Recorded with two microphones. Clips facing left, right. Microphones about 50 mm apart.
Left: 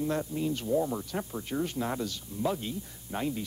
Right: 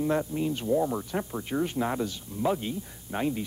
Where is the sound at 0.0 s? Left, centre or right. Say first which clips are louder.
Right 3 dB; right.